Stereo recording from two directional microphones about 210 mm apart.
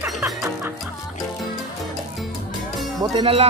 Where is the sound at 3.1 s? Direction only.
25° right (ahead or behind).